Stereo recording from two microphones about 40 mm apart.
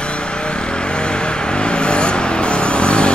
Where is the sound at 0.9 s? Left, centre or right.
Left.